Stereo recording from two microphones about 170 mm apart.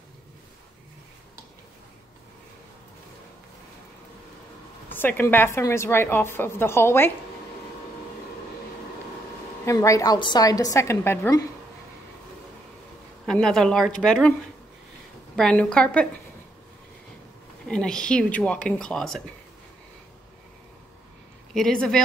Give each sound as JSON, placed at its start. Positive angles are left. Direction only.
{"t": 4.8, "sound": "a woman's voice", "side_deg": 10}
{"t": 9.7, "sound": "a woman's voice", "side_deg": 20}
{"t": 13.2, "sound": "speech", "side_deg": 5}
{"t": 15.3, "sound": "speech", "side_deg": 5}
{"t": 17.6, "sound": "speech", "side_deg": 5}
{"t": 21.5, "sound": "speech", "side_deg": 5}